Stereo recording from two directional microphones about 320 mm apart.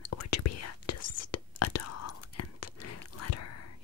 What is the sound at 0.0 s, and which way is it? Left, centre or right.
Whispering, left.